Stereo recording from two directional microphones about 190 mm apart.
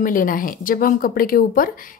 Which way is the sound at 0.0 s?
45° left (ahead or behind).